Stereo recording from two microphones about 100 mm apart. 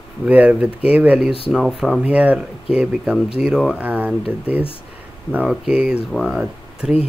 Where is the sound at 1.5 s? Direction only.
5° right (ahead or behind).